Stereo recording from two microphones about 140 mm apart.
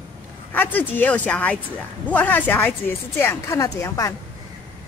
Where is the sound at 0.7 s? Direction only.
10° left (ahead or behind).